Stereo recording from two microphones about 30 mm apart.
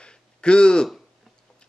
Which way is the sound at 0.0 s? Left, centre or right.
Left.